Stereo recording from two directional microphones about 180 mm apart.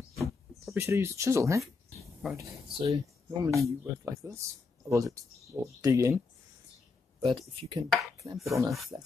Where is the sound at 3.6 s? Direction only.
15° right (ahead or behind).